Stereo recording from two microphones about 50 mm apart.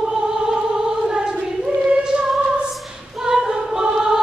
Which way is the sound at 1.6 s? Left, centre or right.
Centre.